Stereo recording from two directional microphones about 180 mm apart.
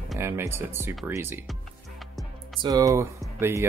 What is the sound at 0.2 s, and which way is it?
Speech, 15° right (ahead or behind).